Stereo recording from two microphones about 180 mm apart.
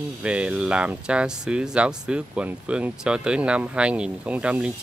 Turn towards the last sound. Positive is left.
turn(degrees=-5)  # may be behind; listen again after turning